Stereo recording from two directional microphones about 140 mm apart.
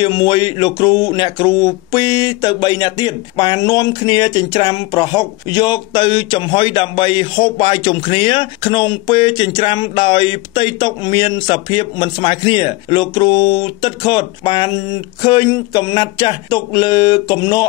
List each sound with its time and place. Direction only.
0.0 s speech: 30° left (ahead or behind)